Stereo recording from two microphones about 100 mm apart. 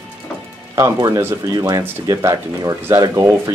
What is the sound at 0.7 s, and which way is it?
Speech, 35° right (ahead or behind).